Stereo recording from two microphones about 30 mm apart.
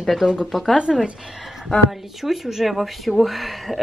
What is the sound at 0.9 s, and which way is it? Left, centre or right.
Speech, centre.